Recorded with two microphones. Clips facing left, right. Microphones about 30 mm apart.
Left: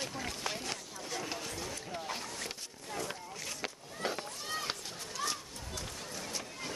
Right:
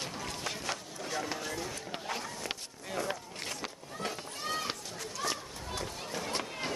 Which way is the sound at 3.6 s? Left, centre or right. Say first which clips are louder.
Even; centre.